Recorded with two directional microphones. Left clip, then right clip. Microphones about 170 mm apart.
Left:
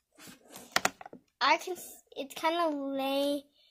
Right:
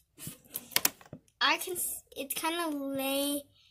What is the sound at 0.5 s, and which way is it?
Typing, 50° left (ahead or behind).